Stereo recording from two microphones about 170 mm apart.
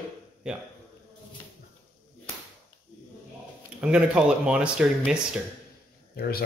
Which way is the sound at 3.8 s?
5° right (ahead or behind).